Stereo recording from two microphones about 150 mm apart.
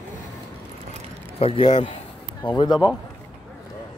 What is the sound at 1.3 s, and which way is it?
Speech, 40° left (ahead or behind).